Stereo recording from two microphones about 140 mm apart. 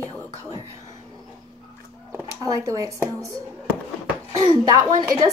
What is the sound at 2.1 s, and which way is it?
Speech, 20° right (ahead or behind).